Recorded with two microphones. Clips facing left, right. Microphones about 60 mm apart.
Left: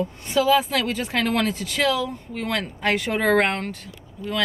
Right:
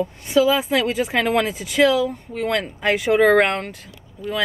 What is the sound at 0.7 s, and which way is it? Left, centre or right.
Speech, centre.